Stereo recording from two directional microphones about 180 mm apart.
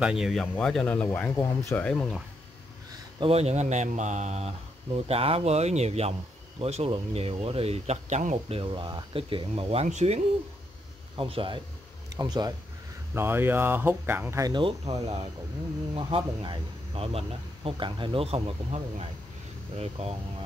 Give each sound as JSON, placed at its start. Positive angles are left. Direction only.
{"t": 0.0, "sound": "speech", "side_deg": -5}
{"t": 3.2, "sound": "speech", "side_deg": -35}
{"t": 15.9, "sound": "speech", "side_deg": -30}